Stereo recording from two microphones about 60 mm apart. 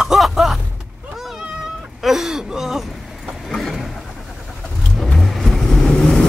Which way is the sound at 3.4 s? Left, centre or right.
Centre.